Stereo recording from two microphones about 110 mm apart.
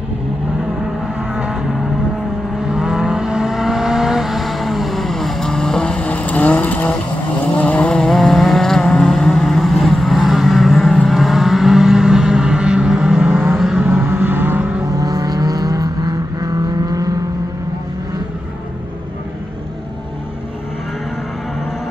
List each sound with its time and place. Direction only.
1.3 s vehicle: 10° right (ahead or behind)
2.6 s vehicle: 5° right (ahead or behind)
13.6 s vehicle: 5° right (ahead or behind)
13.8 s vehicle: 20° right (ahead or behind)
15.0 s vehicle: 30° right (ahead or behind)